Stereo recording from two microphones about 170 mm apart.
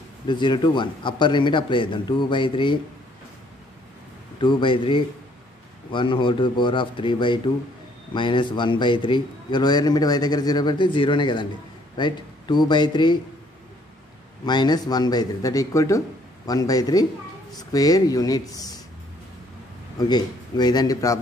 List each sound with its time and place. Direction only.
0.3 s a man's voice: 25° left (ahead or behind)
4.4 s a man's voice: 30° left (ahead or behind)
14.4 s a man's voice: 25° left (ahead or behind)
20.0 s a man's voice: 25° left (ahead or behind)